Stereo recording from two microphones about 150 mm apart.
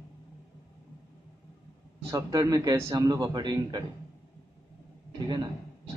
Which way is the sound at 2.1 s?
25° right (ahead or behind).